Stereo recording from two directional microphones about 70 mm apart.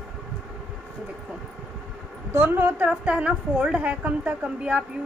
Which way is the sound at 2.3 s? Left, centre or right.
Right.